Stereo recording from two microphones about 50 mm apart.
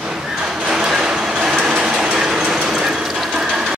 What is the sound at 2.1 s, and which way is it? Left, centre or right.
Gears, centre.